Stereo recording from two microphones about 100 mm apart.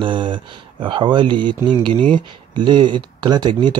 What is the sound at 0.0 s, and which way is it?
Speech, 55° right (ahead or behind).